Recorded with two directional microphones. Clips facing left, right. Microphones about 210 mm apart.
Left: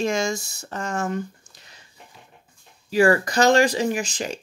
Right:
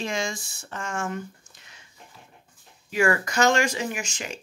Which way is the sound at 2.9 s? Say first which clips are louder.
Left 5 dB; 35° left (ahead or behind).